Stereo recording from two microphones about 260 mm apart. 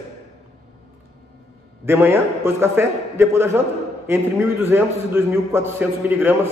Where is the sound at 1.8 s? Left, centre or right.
Centre.